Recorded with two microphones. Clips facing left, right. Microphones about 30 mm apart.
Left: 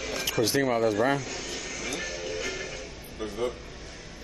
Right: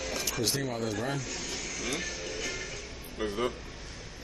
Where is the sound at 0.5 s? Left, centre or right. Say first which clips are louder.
Left 9 dB; left.